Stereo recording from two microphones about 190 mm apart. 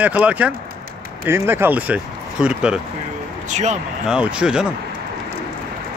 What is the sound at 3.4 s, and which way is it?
Speech, 40° right (ahead or behind).